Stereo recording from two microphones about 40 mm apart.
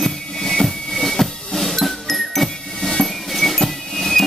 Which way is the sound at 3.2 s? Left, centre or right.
Centre.